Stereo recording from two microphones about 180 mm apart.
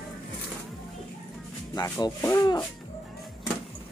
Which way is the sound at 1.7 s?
20° left (ahead or behind).